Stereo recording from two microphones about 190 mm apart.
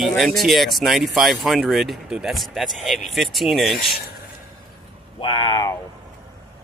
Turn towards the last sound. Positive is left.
turn(degrees=20)  # may be behind; listen again after turning